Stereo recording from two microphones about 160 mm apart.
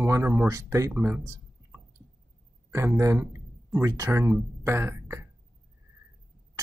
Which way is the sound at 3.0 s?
20° right (ahead or behind).